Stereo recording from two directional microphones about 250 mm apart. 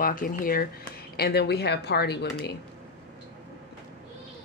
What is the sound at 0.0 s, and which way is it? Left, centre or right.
Speech, left.